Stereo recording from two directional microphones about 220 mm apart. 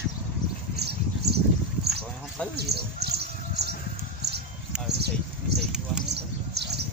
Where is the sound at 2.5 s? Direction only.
45° right (ahead or behind).